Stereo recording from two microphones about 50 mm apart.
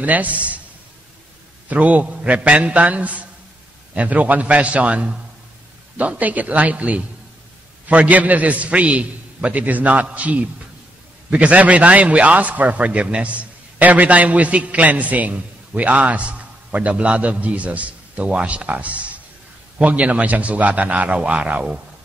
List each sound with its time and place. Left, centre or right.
0.0 s a man's voice: right
1.7 s a man's voice: right